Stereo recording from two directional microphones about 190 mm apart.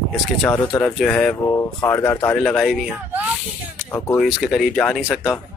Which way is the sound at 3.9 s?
15° left (ahead or behind).